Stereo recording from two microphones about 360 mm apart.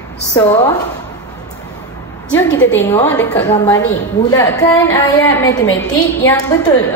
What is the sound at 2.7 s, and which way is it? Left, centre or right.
A woman's voice, centre.